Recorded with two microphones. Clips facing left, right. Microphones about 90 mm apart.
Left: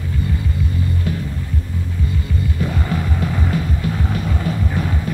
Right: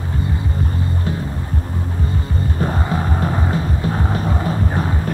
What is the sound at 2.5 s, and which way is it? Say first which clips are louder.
Music: right 3 dB; 40° right (ahead or behind).